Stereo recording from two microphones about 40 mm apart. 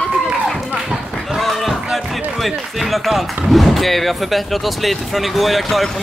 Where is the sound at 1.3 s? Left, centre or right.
Centre.